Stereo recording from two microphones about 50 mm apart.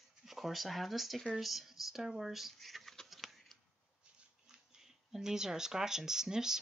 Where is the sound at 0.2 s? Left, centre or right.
Centre.